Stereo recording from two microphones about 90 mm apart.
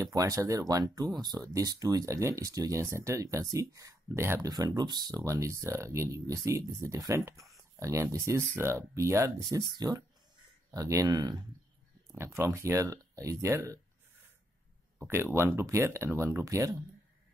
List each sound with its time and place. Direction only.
0.0 s speech: 40° right (ahead or behind)
4.5 s speech: 50° right (ahead or behind)
5.2 s speech: 35° right (ahead or behind)
11.1 s speech: 50° right (ahead or behind)
12.1 s speech: 30° right (ahead or behind)
15.0 s speech: 30° right (ahead or behind)